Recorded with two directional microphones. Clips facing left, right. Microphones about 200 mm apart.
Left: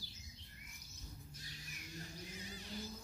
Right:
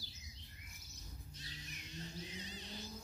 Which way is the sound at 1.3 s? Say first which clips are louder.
Right 1 dB; 25° right (ahead or behind).